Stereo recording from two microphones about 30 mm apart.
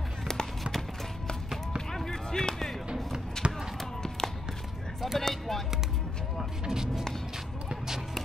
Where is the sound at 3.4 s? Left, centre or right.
Left.